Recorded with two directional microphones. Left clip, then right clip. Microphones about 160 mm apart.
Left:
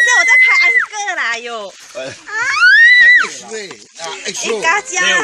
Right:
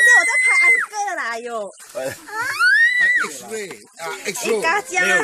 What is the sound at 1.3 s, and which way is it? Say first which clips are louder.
Speech: left 4 dB; 50° right (ahead or behind).